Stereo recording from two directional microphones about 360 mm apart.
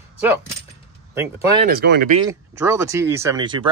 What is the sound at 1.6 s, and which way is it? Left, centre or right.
Speech, right.